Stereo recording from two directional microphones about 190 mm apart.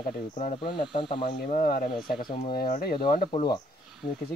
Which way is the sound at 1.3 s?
50° left (ahead or behind).